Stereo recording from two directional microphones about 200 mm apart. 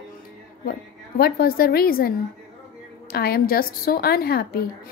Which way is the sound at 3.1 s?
50° left (ahead or behind).